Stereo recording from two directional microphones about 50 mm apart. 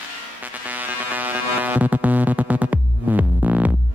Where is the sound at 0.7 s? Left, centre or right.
Right.